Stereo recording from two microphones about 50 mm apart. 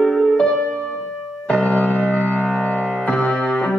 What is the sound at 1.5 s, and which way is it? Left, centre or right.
Music, left.